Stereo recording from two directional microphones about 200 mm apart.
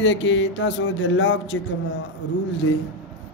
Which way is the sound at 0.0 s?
70° left (ahead or behind).